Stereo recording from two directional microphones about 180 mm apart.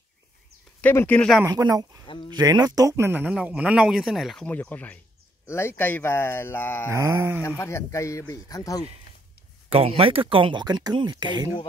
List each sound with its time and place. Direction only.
0.7 s speech: 10° left (ahead or behind)
1.4 s speech: 20° right (ahead or behind); by 6.9 s 10° left (ahead or behind)
6.9 s a sound: 15° right (ahead or behind)
7.4 s speech: 15° left (ahead or behind)
9.7 s speech: 30° right (ahead or behind)